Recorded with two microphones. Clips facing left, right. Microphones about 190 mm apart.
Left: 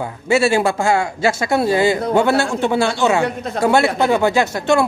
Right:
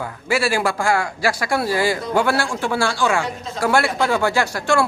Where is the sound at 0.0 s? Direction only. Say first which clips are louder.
Left 5 dB; 25° left (ahead or behind).